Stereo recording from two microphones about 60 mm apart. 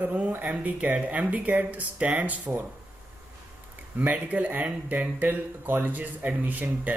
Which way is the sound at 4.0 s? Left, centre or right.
Right.